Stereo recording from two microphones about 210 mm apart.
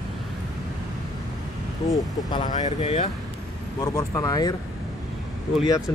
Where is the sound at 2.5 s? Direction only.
30° left (ahead or behind).